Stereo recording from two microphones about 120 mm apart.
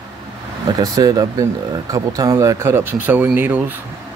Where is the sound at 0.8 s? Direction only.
30° right (ahead or behind); by 3.8 s 15° right (ahead or behind).